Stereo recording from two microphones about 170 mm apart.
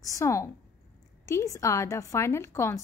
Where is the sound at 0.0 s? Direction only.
20° left (ahead or behind).